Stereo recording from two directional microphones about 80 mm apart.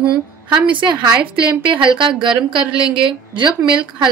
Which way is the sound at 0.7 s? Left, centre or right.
Right.